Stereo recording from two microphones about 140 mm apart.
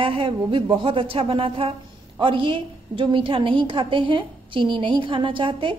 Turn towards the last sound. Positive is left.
turn(degrees=-35)  # may be behind; listen again after turning